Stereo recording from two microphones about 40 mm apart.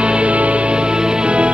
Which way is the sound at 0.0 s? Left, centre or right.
Right.